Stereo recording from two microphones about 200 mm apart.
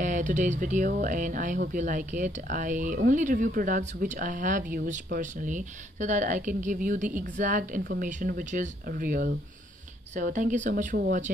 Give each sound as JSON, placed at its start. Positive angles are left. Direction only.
{"t": 0.0, "sound": "speech", "side_deg": -40}